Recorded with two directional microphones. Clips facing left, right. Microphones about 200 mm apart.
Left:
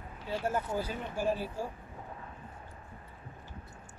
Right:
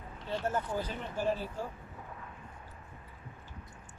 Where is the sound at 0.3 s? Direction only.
10° left (ahead or behind).